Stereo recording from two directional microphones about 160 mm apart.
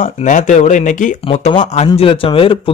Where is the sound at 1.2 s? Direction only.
35° left (ahead or behind).